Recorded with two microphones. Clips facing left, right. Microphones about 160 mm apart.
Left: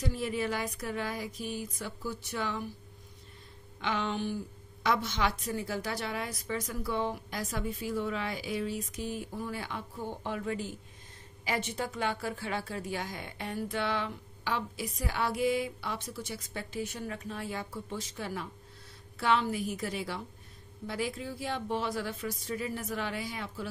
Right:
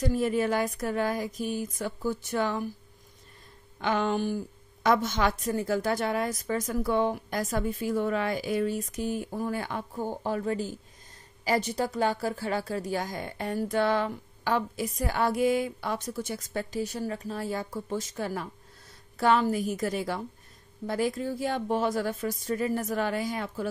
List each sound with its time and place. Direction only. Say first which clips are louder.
0.0 s speech: right 7 dB; 45° right (ahead or behind)
3.8 s speech: right 6 dB; 45° right (ahead or behind)